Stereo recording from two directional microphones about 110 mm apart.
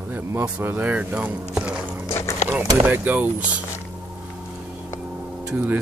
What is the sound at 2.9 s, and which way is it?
Speech, 15° right (ahead or behind).